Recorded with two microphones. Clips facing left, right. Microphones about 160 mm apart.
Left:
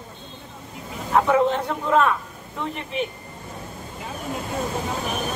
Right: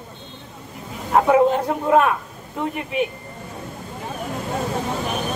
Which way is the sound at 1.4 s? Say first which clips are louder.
Right 4 dB; 40° right (ahead or behind).